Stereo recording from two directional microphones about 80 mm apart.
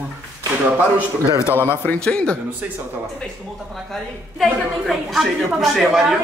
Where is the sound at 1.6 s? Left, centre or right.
Left.